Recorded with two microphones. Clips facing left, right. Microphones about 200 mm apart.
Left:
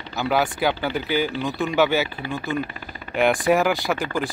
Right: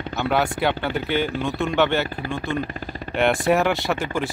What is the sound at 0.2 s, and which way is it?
Speech, centre (ahead or behind).